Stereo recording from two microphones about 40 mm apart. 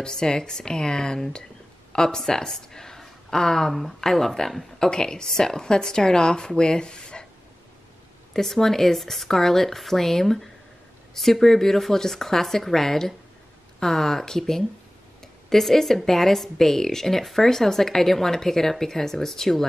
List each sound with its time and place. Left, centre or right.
0.0 s speech: centre
4.7 s speech: centre
8.3 s speech: centre